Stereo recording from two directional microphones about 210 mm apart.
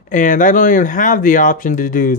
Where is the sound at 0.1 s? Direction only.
40° left (ahead or behind).